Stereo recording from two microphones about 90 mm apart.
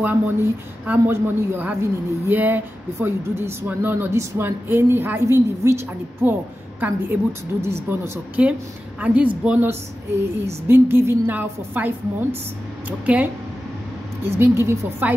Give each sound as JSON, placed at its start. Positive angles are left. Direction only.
{"t": 0.0, "sound": "a woman's voice", "side_deg": -20}
{"t": 6.2, "sound": "a woman's voice", "side_deg": -20}
{"t": 9.0, "sound": "speech", "side_deg": -15}
{"t": 10.4, "sound": "a woman's voice", "side_deg": -25}
{"t": 14.2, "sound": "a woman's voice", "side_deg": -25}